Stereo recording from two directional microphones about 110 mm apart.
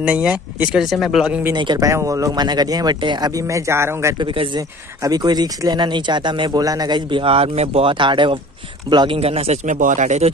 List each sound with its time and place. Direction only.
0.0 s speech: 10° right (ahead or behind)
0.8 s speech: centre (ahead or behind)
1.5 s speech: 45° right (ahead or behind)
1.8 s speech: 30° right (ahead or behind)
4.2 s speech: 50° right (ahead or behind)
4.6 s speech: 35° right (ahead or behind)
9.2 s speech: 65° right (ahead or behind); by 10.3 s 90° right